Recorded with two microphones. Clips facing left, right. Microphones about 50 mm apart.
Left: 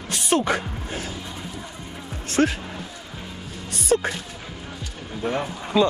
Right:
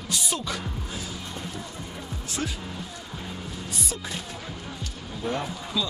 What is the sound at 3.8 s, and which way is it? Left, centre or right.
Speech, left.